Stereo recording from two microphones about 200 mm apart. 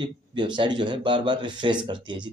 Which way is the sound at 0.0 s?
25° right (ahead or behind).